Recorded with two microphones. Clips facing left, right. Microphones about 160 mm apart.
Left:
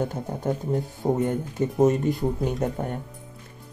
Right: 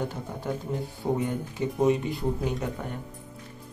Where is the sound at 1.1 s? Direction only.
50° left (ahead or behind).